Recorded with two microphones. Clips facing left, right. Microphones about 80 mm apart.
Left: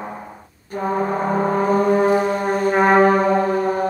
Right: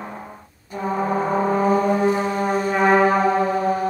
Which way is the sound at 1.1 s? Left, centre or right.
Left.